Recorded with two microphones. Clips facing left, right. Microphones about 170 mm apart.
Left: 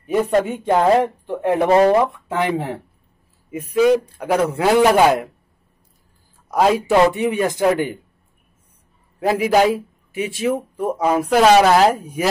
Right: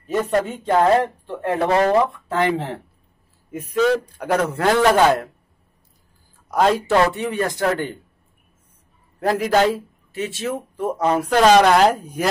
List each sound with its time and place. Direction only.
0.0 s speech: 10° left (ahead or behind)
6.5 s speech: 5° left (ahead or behind)
9.2 s a man's voice: 5° left (ahead or behind)